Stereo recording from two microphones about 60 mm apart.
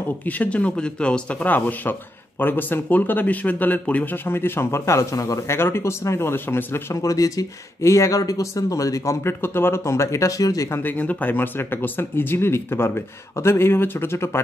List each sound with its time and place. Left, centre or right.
0.3 s speech: left
1.5 s speech: left
6.9 s speech: left
9.4 s speech: left
10.7 s speech: left